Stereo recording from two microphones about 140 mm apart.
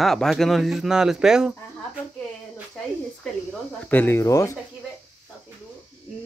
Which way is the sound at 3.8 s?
15° left (ahead or behind).